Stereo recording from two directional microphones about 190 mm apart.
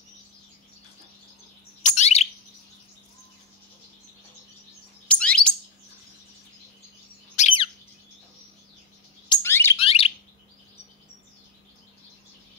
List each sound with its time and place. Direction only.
1.8 s bird: 35° left (ahead or behind)
5.0 s bird: 5° left (ahead or behind)
7.3 s bird: 35° left (ahead or behind)
9.4 s bird: 10° left (ahead or behind)
9.8 s alarm: 30° left (ahead or behind)